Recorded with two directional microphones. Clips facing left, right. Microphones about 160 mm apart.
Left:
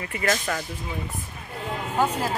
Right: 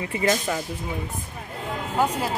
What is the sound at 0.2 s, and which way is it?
Speech, 15° right (ahead or behind).